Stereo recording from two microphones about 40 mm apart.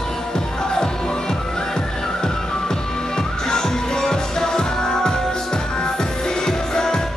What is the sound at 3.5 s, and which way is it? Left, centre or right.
Music, centre.